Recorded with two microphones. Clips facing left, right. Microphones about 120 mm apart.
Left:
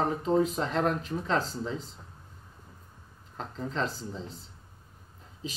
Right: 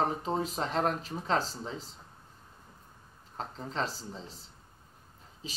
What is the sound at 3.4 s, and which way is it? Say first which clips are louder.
Speech: left 2 dB; 30° right (ahead or behind).